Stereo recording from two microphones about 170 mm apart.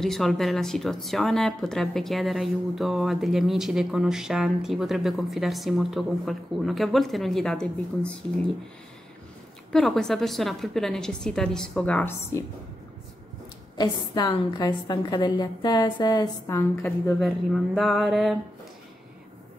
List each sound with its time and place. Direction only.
0.0 s speech: centre (ahead or behind)
9.7 s speech: 5° left (ahead or behind)
13.7 s a woman's voice: 25° left (ahead or behind)
17.2 s speech: centre (ahead or behind)